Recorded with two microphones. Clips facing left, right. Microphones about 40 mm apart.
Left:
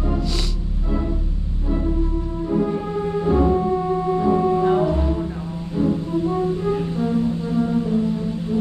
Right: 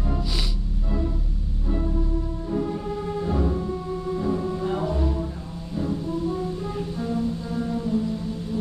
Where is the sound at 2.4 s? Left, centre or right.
Left.